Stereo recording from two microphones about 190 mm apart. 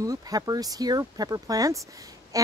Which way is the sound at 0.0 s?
20° right (ahead or behind).